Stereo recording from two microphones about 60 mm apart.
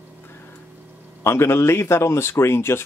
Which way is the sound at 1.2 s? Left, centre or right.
Left.